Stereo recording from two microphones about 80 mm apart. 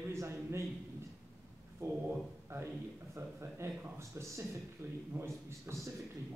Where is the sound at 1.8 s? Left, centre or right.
Right.